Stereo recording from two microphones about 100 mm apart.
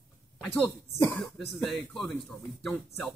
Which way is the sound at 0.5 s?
15° left (ahead or behind).